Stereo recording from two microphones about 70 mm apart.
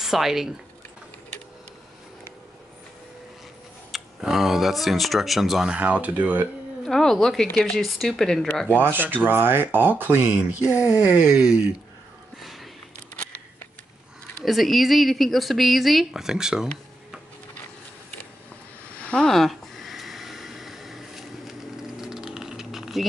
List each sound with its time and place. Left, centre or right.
0.0 s speech: centre
3.9 s speech: centre
5.7 s speech: centre
6.9 s speech: centre
8.5 s speech: centre
8.7 s speech: right
12.4 s a sound: centre
14.4 s speech: centre
19.2 s a sound: centre